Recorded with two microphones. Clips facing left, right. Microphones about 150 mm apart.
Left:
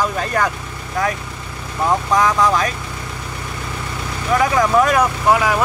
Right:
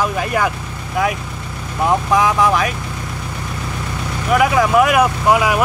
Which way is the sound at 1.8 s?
10° right (ahead or behind).